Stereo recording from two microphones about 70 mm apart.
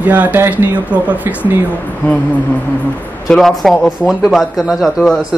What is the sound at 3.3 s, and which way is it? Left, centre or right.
Speech, centre.